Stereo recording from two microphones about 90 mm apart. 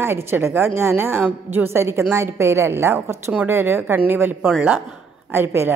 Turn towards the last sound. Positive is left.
turn(degrees=-25)  # may be behind; listen again after turning